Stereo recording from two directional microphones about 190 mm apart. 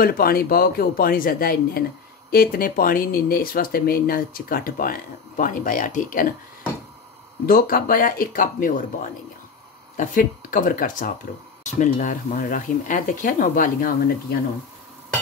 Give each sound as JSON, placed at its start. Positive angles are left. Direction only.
{"t": 0.0, "sound": "speech", "side_deg": 50}
{"t": 7.4, "sound": "speech", "side_deg": 50}